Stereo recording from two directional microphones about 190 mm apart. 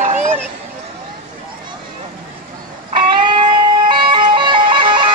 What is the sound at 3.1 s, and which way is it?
Music, 25° right (ahead or behind).